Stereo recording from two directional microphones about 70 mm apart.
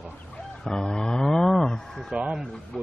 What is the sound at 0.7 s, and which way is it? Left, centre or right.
Moo, centre.